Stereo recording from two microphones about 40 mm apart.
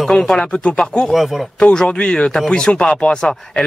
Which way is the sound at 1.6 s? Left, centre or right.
Left.